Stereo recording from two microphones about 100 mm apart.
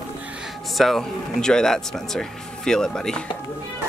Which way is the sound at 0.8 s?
Centre (ahead or behind).